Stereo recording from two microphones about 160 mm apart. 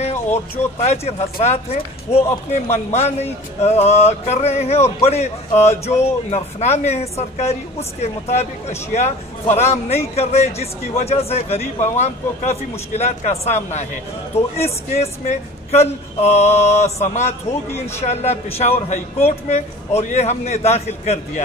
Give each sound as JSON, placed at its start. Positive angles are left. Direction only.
{"t": 0.0, "sound": "music", "side_deg": 45}
{"t": 5.0, "sound": "speech", "side_deg": 40}
{"t": 5.9, "sound": "music", "side_deg": 45}
{"t": 9.7, "sound": "speech", "side_deg": 40}
{"t": 14.6, "sound": "music", "side_deg": 40}
{"t": 18.6, "sound": "speech", "side_deg": 40}
{"t": 19.2, "sound": "music", "side_deg": 40}